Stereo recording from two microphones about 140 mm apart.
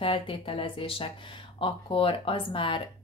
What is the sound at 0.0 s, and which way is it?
A woman's voice, 40° left (ahead or behind).